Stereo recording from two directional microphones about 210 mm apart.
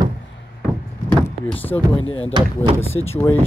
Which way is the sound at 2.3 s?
25° right (ahead or behind).